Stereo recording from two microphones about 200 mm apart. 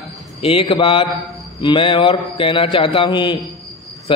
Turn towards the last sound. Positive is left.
turn(degrees=25)  # may be behind; listen again after turning